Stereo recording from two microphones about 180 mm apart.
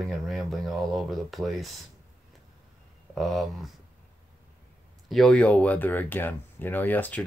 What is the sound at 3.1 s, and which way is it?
Speech, centre (ahead or behind).